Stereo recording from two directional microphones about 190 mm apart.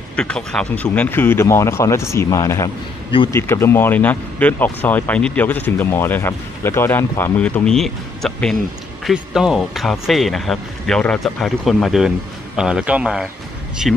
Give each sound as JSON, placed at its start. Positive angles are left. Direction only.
{"t": 0.1, "sound": "speech", "side_deg": 5}
{"t": 3.1, "sound": "speech", "side_deg": 25}
{"t": 3.3, "sound": "speech", "side_deg": 15}